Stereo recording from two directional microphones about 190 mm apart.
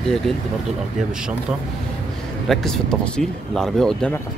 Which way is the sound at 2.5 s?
Centre (ahead or behind).